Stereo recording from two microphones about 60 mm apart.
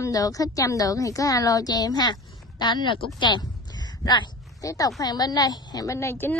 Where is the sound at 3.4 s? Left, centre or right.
Left.